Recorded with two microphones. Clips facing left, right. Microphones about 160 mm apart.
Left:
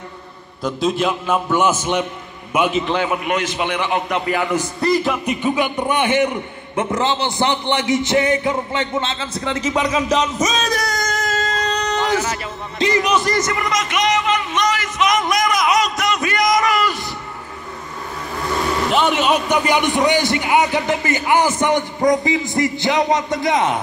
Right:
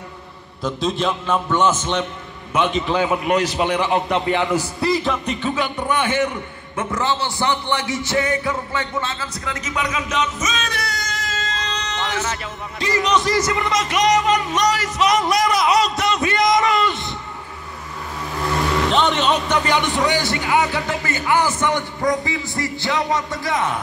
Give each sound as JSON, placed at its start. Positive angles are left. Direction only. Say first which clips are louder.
{"t": 0.7, "sound": "a man's voice", "louder": "left 2 dB", "side_deg": 5}
{"t": 3.3, "sound": "a man's voice", "louder": "right 2 dB", "side_deg": -35}
{"t": 4.7, "sound": "music", "louder": "left 5 dB", "side_deg": 0}
{"t": 5.2, "sound": "a man's voice", "louder": "left 3 dB", "side_deg": 15}
{"t": 12.7, "sound": "speech", "louder": "left 5 dB", "side_deg": 20}
{"t": 13.0, "sound": "music", "louder": "even", "side_deg": 0}
{"t": 13.4, "sound": "a man's voice", "louder": "even", "side_deg": -20}
{"t": 13.7, "sound": "speech", "louder": "right 1 dB", "side_deg": -35}
{"t": 18.9, "sound": "a man's voice", "louder": "left 3 dB", "side_deg": 5}